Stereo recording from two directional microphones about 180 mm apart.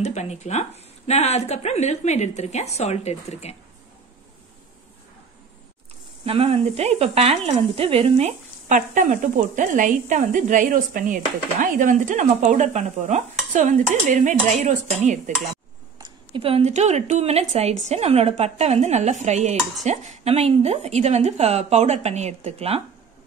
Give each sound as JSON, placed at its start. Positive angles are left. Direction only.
{"t": 0.0, "sound": "speech", "side_deg": 40}
{"t": 6.2, "sound": "speech", "side_deg": -35}
{"t": 16.0, "sound": "speech", "side_deg": -30}